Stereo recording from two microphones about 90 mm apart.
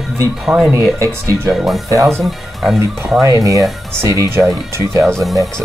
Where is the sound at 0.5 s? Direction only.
10° right (ahead or behind).